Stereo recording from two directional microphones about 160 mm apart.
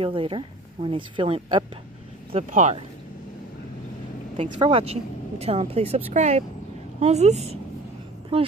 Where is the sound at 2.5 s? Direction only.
50° right (ahead or behind).